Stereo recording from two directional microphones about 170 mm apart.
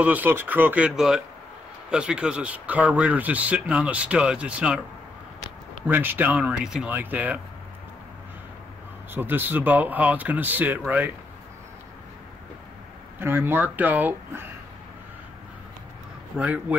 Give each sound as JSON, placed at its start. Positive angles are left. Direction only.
{"t": 0.0, "sound": "speech", "side_deg": -10}
{"t": 5.9, "sound": "speech", "side_deg": -10}
{"t": 9.1, "sound": "speech", "side_deg": -10}
{"t": 13.2, "sound": "speech", "side_deg": -15}
{"t": 16.3, "sound": "speech", "side_deg": -10}